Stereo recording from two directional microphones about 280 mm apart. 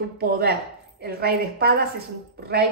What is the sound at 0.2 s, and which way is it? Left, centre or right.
Speech, right.